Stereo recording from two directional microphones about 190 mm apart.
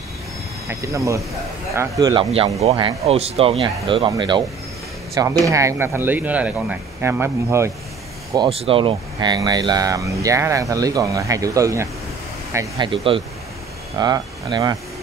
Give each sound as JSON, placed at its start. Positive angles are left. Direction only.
{"t": 0.7, "sound": "speech", "side_deg": -15}
{"t": 8.5, "sound": "speech", "side_deg": -30}